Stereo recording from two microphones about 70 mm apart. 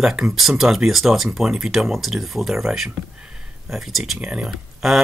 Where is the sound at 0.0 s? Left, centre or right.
Centre.